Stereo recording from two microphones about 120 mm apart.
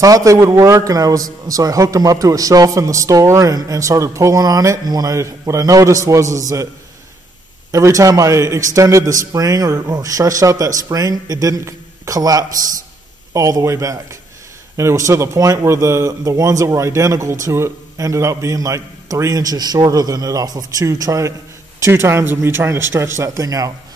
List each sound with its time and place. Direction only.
0.0 s a man's voice: 30° right (ahead or behind)
7.7 s a man's voice: 25° right (ahead or behind)